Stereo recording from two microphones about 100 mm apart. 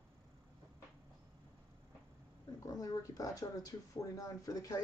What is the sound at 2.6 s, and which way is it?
Speech, 35° left (ahead or behind).